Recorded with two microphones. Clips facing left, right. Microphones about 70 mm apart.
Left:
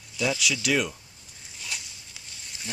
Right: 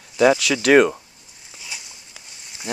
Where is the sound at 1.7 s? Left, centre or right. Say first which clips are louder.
Right 1 dB; centre.